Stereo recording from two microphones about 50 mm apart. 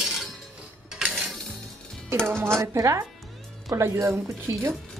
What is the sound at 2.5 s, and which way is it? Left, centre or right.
Speech, right.